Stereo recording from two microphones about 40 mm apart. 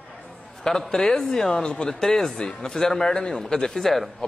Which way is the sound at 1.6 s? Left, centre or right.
Left.